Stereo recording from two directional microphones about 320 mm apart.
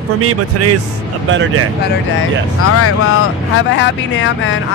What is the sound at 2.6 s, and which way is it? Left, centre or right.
Speech, left.